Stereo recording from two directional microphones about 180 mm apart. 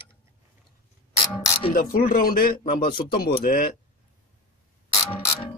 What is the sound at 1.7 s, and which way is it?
Speech, 50° left (ahead or behind).